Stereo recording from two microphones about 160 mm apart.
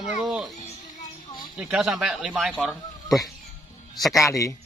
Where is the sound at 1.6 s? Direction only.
5° right (ahead or behind).